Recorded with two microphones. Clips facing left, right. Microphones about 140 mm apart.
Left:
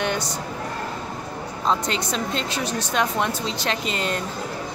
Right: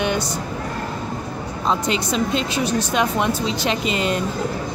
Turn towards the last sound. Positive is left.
turn(degrees=-15)  # may be behind; listen again after turning